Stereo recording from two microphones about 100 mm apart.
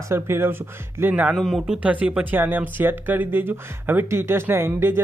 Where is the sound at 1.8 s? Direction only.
15° right (ahead or behind).